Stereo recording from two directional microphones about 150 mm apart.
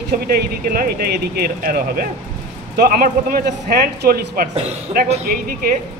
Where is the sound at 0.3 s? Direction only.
85° right.